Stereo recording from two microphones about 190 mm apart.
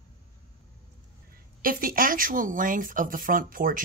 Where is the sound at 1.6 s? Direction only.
50° right (ahead or behind).